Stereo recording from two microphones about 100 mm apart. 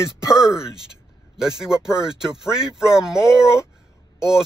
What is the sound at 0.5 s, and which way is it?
Speech, 5° right (ahead or behind).